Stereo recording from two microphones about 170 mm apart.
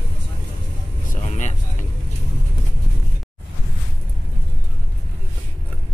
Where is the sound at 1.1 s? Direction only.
45° left (ahead or behind).